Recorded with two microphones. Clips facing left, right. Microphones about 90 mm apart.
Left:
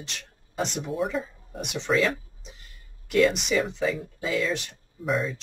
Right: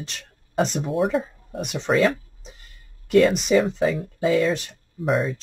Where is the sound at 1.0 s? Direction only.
65° right (ahead or behind).